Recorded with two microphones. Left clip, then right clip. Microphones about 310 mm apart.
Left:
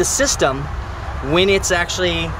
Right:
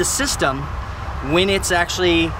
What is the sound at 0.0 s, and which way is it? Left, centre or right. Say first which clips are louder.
Speech: left 3 dB; centre.